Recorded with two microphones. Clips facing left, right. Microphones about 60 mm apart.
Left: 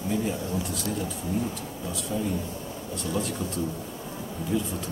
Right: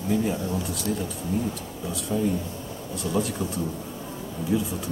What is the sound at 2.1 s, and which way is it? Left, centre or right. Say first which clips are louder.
Speech: right 4 dB; centre.